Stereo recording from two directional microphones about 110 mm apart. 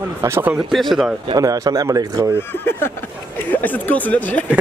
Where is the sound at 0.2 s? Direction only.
25° right (ahead or behind).